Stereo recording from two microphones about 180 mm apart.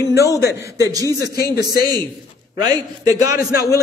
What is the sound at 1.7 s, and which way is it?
Speech, 55° left (ahead or behind).